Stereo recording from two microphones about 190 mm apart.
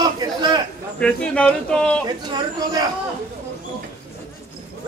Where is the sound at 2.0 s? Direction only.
20° right (ahead or behind).